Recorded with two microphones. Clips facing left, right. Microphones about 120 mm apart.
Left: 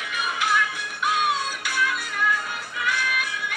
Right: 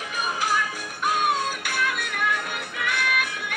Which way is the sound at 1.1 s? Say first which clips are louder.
Right 1 dB; 50° right (ahead or behind).